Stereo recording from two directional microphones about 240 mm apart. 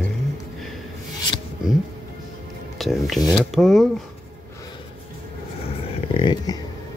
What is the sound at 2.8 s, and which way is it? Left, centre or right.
Speech, centre.